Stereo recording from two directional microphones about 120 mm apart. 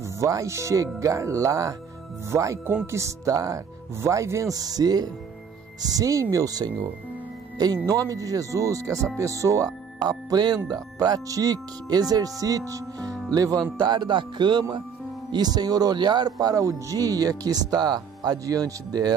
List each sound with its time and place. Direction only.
0.0 s speech: 25° right (ahead or behind)